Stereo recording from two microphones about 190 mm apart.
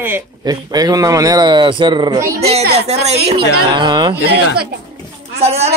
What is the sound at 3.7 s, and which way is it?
Speech, 25° right (ahead or behind).